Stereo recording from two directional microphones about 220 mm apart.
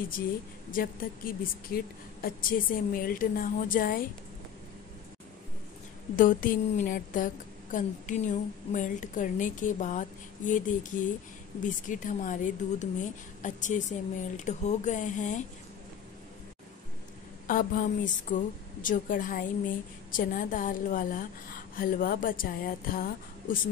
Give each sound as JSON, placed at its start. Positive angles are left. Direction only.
{"t": 0.7, "sound": "speech", "side_deg": 40}
{"t": 6.1, "sound": "speech", "side_deg": 35}
{"t": 17.5, "sound": "speech", "side_deg": 40}